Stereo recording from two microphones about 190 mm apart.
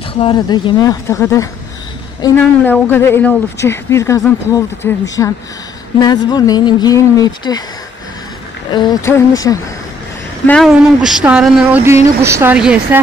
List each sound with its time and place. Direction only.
0.2 s a woman's voice: 25° left (ahead or behind)
8.7 s a woman's voice: 20° left (ahead or behind)
10.4 s speech: 5° left (ahead or behind)